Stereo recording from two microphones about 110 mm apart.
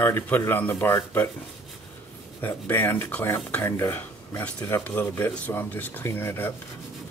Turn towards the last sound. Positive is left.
turn(degrees=20)  # may be behind; listen again after turning